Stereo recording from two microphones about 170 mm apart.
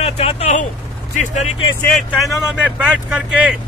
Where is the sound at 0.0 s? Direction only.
35° left (ahead or behind).